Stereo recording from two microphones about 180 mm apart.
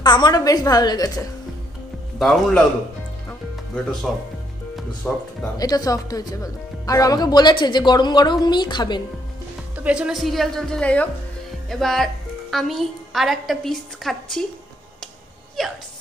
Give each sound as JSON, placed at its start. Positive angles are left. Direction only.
{"t": 0.0, "sound": "speech", "side_deg": 25}
{"t": 2.1, "sound": "a woman's voice", "side_deg": 0}
{"t": 3.3, "sound": "music", "side_deg": 5}
{"t": 4.7, "sound": "speech", "side_deg": 5}
{"t": 5.6, "sound": "speech", "side_deg": 20}
{"t": 9.8, "sound": "a woman's voice", "side_deg": -5}
{"t": 15.6, "sound": "a woman's voice", "side_deg": 0}